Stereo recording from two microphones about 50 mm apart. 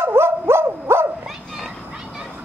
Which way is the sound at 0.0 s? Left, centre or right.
Right.